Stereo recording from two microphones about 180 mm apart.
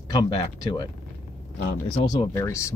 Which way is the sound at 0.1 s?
25° left (ahead or behind).